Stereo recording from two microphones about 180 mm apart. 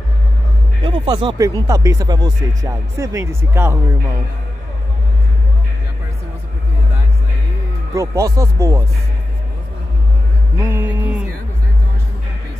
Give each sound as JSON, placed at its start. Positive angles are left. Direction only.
{"t": 0.8, "sound": "speech", "side_deg": -25}
{"t": 7.9, "sound": "speech", "side_deg": -15}
{"t": 10.6, "sound": "music", "side_deg": -15}